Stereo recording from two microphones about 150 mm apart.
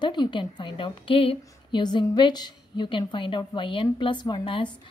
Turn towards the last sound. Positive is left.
turn(degrees=30)  # may be behind; listen again after turning